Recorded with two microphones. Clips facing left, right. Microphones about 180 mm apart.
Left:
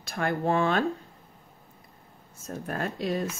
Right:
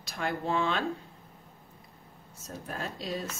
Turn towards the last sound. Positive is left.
turn(degrees=55)  # may be behind; listen again after turning